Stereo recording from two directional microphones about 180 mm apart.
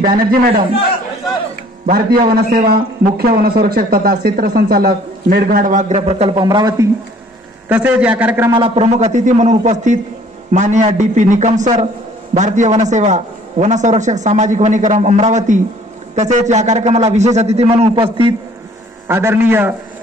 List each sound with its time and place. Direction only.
0.0 s a man's voice: 55° right (ahead or behind)
1.9 s a man's voice: 55° right (ahead or behind); by 6.4 s 35° right (ahead or behind)
6.4 s a man's voice: 20° right (ahead or behind)
7.6 s a man's voice: 10° right (ahead or behind)
8.5 s a man's voice: 30° right (ahead or behind)
19.0 s a man's voice: 10° right (ahead or behind)